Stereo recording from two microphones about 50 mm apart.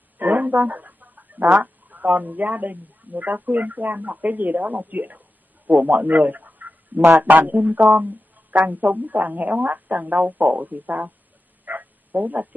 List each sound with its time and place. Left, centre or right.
0.2 s a man's voice: right
11.6 s bow-wow: right